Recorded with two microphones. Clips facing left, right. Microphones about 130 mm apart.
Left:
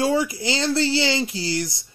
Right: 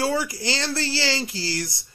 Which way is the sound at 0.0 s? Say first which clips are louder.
Left 3 dB; 20° left (ahead or behind).